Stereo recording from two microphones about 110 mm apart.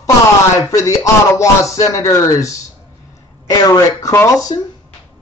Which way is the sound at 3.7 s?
30° left (ahead or behind).